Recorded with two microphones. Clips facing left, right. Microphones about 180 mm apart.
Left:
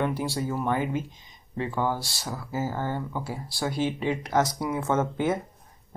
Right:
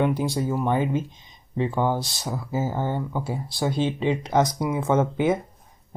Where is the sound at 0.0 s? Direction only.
15° right (ahead or behind).